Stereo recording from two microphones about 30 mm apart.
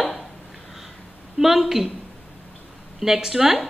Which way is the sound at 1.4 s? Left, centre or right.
Centre.